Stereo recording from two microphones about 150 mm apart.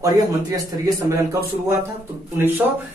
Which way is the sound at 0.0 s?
20° right (ahead or behind).